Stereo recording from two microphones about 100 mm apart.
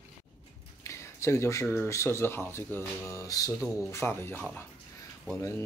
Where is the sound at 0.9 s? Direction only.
30° left (ahead or behind).